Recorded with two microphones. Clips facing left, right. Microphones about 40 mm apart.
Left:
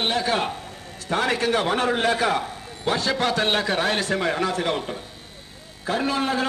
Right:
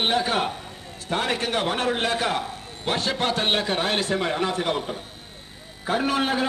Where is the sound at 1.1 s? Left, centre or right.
Left.